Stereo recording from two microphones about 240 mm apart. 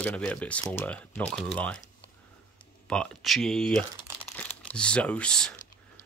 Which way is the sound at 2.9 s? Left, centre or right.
Centre.